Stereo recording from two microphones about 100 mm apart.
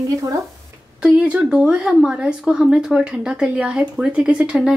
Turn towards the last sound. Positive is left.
turn(degrees=-5)  # may be behind; listen again after turning